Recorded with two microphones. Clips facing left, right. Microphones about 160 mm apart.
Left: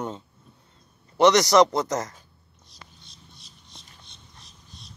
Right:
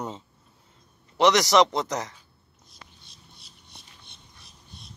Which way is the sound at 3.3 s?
60° right (ahead or behind).